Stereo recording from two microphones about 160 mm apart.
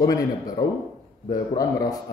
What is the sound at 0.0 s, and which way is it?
Speech, 25° left (ahead or behind).